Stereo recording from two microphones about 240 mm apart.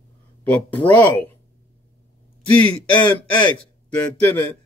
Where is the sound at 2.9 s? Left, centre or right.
Centre.